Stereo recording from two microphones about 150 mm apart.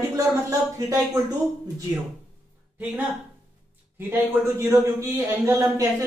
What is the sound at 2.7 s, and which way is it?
Speech, 10° right (ahead or behind).